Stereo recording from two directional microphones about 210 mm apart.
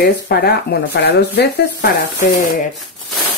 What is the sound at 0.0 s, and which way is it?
Speech, 50° left (ahead or behind).